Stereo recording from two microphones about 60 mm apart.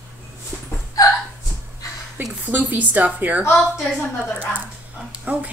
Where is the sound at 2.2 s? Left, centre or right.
Right.